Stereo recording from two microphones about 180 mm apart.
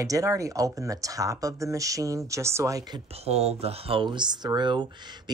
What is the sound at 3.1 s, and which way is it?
Speech, 35° right (ahead or behind).